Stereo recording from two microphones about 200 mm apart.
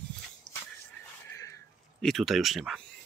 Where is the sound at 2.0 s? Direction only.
Centre (ahead or behind).